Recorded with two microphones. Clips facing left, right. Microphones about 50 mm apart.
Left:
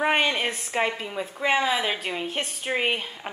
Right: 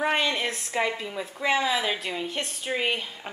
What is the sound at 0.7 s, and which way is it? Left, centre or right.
Speech, left.